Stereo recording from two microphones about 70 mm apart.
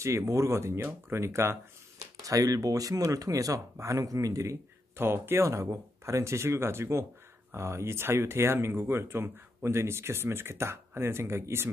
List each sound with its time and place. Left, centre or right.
0.0 s speech: right
2.2 s speech: right
4.9 s speech: right